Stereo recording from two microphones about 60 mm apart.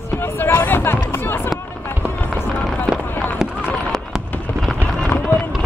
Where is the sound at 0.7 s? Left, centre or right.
Left.